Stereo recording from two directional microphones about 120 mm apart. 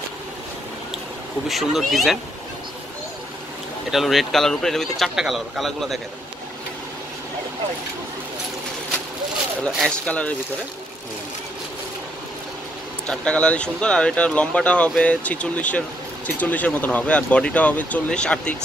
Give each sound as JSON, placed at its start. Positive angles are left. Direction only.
{"t": 1.5, "sound": "speech", "side_deg": 0}
{"t": 3.9, "sound": "speech", "side_deg": 0}
{"t": 9.8, "sound": "speech", "side_deg": 10}
{"t": 13.0, "sound": "speech", "side_deg": 5}